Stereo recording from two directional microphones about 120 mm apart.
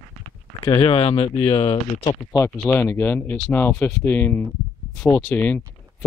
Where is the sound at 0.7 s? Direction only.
45° left (ahead or behind).